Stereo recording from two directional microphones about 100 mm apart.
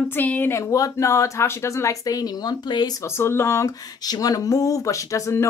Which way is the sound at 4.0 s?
40° left (ahead or behind).